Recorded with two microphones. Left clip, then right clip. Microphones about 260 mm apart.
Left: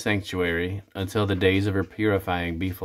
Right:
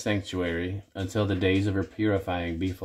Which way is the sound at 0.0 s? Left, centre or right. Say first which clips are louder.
Left 4 dB; centre.